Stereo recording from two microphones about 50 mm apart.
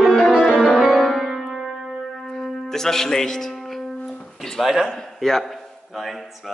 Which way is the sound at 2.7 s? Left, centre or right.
Centre.